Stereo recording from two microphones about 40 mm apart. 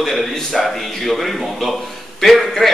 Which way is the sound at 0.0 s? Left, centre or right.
Centre.